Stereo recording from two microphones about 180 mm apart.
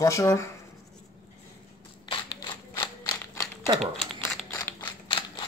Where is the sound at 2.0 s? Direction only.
25° left (ahead or behind).